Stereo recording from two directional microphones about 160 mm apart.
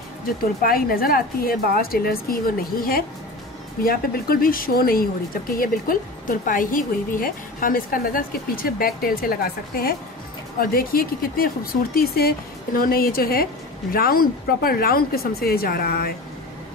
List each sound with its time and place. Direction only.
0.6 s speech: 65° left (ahead or behind)